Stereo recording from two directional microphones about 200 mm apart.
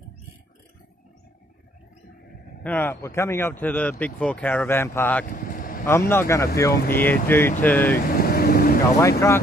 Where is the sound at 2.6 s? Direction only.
10° left (ahead or behind).